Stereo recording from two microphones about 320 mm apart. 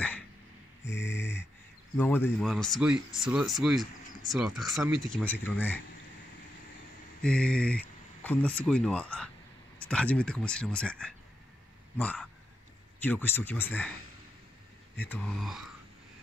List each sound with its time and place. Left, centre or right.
1.1 s a sound: left
2.0 s speech: centre
7.2 s speech: centre
15.0 s speech: centre